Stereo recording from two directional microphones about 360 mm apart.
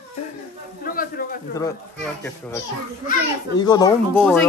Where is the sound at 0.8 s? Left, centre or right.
Left.